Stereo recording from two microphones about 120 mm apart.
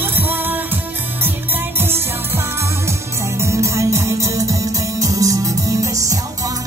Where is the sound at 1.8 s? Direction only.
20° right (ahead or behind).